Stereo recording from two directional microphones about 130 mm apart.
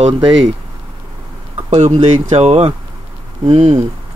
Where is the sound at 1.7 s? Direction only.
60° right (ahead or behind).